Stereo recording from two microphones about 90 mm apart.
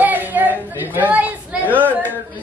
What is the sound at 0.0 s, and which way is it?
Chatter, 20° right (ahead or behind).